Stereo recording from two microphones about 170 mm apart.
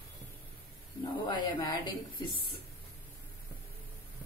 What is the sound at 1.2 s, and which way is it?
A woman's voice, 25° left (ahead or behind).